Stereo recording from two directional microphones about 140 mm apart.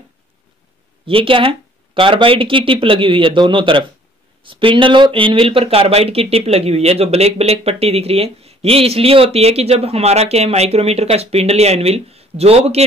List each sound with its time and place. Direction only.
1.0 s speech: 40° right (ahead or behind)